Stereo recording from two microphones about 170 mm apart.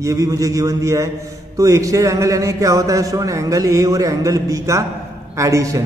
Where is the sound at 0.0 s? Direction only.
20° right (ahead or behind).